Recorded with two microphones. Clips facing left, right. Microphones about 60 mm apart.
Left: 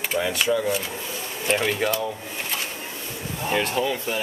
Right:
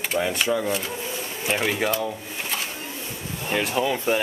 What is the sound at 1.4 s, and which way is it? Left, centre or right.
Speech, centre.